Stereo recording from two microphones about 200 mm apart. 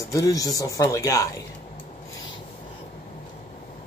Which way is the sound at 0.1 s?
15° left (ahead or behind).